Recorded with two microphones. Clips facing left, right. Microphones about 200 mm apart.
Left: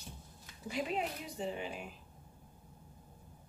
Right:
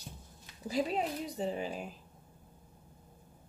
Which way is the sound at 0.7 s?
35° right (ahead or behind).